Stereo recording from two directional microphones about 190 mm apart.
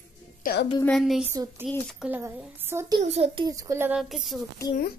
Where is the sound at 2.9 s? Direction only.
35° right (ahead or behind).